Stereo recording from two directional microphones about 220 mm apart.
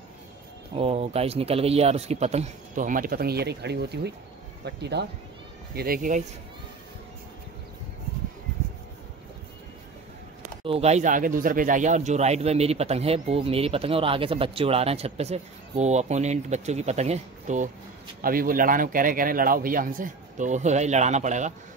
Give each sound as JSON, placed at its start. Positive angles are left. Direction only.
{"t": 0.7, "sound": "speech", "side_deg": -25}
{"t": 5.8, "sound": "a man's voice", "side_deg": -40}
{"t": 10.6, "sound": "a man's voice", "side_deg": -25}